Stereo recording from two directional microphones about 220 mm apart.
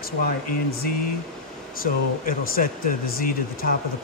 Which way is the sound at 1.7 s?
40° left (ahead or behind).